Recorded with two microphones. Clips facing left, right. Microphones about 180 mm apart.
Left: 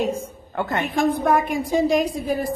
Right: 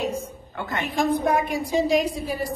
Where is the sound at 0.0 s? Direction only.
50° left (ahead or behind).